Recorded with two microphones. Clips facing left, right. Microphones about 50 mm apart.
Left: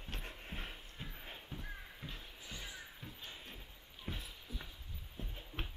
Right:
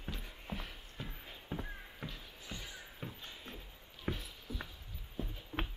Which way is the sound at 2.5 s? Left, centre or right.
Centre.